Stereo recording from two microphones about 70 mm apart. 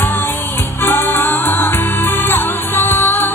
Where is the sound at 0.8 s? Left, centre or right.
Left.